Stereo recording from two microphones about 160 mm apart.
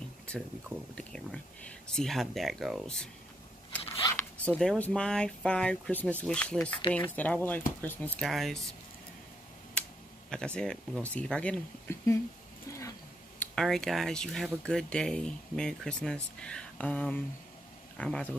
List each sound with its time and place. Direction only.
0.9 s speech: 5° left (ahead or behind)
3.9 s zipper: 20° left (ahead or behind)
4.6 s speech: 5° left (ahead or behind)
10.3 s speech: 5° left (ahead or behind)
13.4 s speech: 5° left (ahead or behind)